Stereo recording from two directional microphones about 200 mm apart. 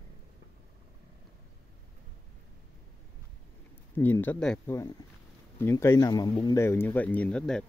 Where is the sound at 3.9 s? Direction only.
10° left (ahead or behind).